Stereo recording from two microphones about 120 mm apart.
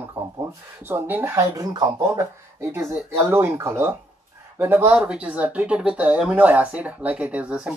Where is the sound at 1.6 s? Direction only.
30° right (ahead or behind).